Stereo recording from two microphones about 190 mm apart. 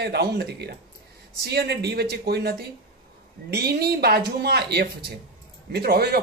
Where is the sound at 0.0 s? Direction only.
60° right (ahead or behind).